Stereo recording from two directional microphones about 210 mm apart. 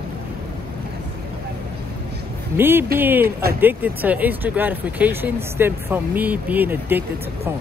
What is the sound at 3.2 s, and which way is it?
Speech, 45° right (ahead or behind).